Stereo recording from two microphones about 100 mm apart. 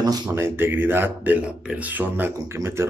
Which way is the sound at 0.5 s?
20° right (ahead or behind).